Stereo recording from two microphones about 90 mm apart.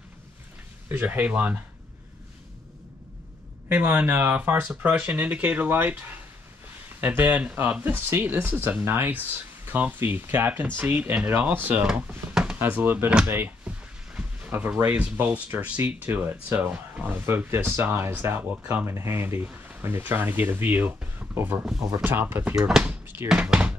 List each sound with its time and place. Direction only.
0.8 s speech: 20° right (ahead or behind)
3.6 s speech: 20° right (ahead or behind)
13.3 s a sound: 25° right (ahead or behind)
14.8 s speech: 25° right (ahead or behind)
22.6 s speech: 5° right (ahead or behind)